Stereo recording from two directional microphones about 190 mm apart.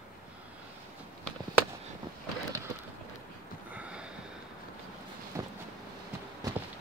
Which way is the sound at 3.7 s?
5° right (ahead or behind).